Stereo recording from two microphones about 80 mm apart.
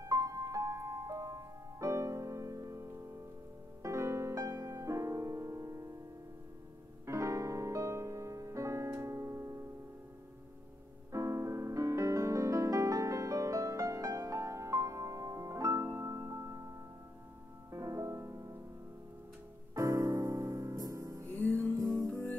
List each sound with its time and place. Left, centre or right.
0.0 s music: right
7.1 s music: right
11.1 s music: right
19.7 s music: right
21.3 s music: left
21.5 s music: right